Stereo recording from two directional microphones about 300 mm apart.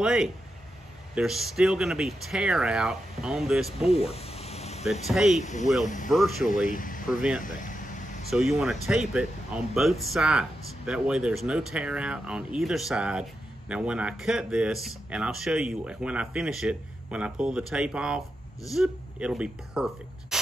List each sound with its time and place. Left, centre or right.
0.0 s speech: centre
3.9 s a sound: centre
5.0 s speech: centre
5.4 s speech: left
6.0 s speech: centre
6.4 s speech: left
7.1 s speech: centre
7.4 s a sound: left
8.3 s speech: centre